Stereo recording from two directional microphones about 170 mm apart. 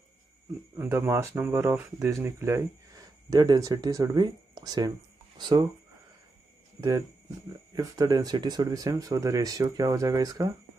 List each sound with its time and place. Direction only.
0.7 s speech: 15° right (ahead or behind)
7.7 s speech: 20° right (ahead or behind)